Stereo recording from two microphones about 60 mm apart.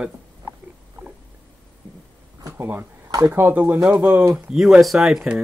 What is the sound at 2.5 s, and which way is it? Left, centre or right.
Speech, right.